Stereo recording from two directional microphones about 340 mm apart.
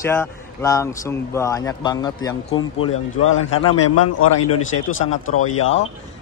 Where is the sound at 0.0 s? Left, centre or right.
Centre.